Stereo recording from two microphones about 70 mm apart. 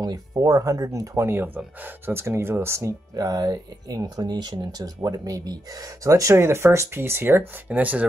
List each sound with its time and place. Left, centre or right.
0.0 s speech: right
1.2 s speech: right
3.2 s speech: right
6.3 s speech: right
7.0 s speech: right